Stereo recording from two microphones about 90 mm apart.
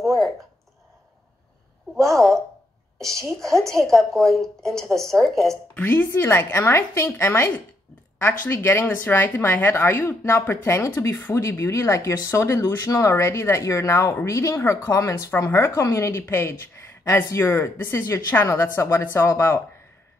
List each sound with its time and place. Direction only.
0.0 s a sound: 5° left (ahead or behind)
2.0 s a woman's voice: 5° left (ahead or behind)
5.8 s a woman's voice: 20° left (ahead or behind)